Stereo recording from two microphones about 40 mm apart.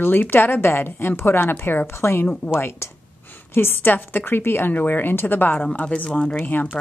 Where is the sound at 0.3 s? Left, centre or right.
Left.